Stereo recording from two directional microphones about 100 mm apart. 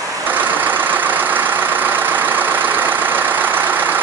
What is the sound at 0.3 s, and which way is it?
Vehicle, 20° right (ahead or behind).